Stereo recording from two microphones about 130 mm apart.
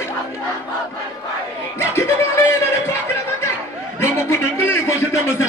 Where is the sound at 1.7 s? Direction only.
20° left (ahead or behind).